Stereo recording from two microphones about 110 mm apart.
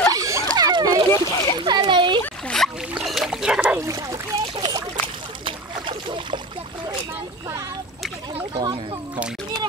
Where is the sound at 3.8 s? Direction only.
30° right (ahead or behind).